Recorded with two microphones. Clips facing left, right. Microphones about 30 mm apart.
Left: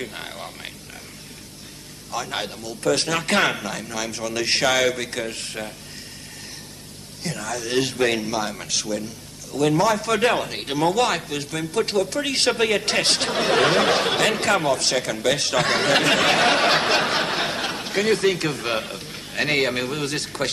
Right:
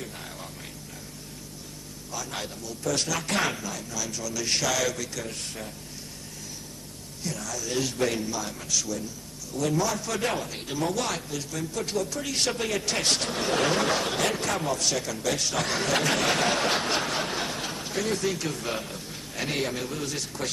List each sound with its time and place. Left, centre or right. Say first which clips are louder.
0.0 s a sound: left 6 dB; left
2.0 s a man's voice: left 7 dB; left
7.2 s a man's voice: left 5 dB; left